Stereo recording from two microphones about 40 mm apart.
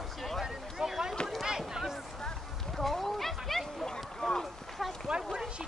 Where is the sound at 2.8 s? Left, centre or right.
Centre.